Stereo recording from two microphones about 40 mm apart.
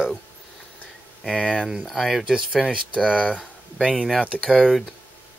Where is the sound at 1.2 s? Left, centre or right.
Left.